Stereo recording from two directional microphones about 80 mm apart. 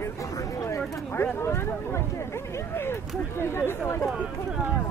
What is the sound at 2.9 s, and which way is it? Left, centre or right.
Speech, left.